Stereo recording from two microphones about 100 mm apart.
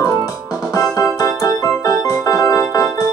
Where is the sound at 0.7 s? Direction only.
35° left (ahead or behind).